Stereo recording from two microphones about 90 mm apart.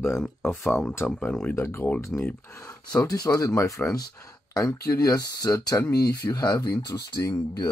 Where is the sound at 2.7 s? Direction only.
40° left (ahead or behind).